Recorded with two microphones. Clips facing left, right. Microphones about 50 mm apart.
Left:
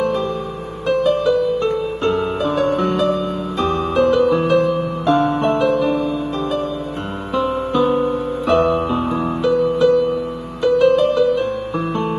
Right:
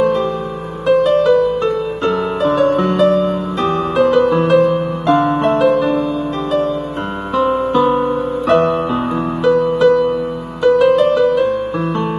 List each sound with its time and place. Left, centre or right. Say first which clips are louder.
0.0 s music: right 5 dB; right
0.8 s music: right 5 dB; right
7.8 s music: right 2 dB; right
9.4 s music: right 4 dB; right